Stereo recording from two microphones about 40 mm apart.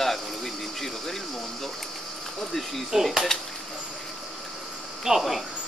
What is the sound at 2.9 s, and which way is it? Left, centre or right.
Speech, centre.